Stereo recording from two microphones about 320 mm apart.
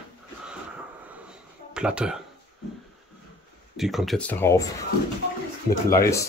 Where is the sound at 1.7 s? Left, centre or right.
Centre.